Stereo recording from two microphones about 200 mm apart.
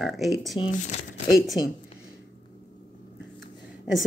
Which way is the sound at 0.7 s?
40° left (ahead or behind).